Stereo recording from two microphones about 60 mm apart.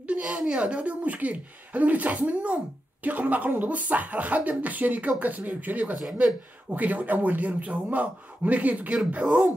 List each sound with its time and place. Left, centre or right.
0.0 s speech: right